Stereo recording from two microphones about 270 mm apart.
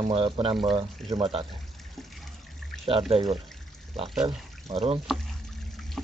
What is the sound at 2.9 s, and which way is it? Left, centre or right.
Speech, centre.